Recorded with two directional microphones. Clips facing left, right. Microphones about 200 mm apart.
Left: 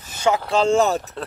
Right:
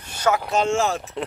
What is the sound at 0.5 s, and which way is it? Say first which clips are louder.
Speech: left 4 dB; 35° left (ahead or behind).